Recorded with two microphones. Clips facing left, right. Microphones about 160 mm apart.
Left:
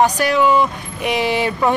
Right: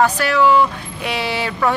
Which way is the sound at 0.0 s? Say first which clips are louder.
Even; 15° left (ahead or behind).